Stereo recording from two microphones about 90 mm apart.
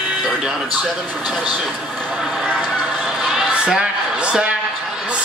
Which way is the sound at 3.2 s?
10° right (ahead or behind).